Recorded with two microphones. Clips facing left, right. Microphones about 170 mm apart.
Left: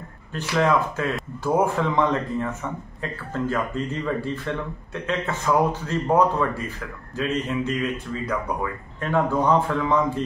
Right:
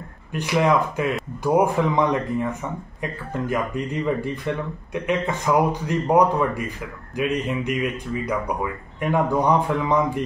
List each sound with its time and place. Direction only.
0.3 s speech: 15° right (ahead or behind)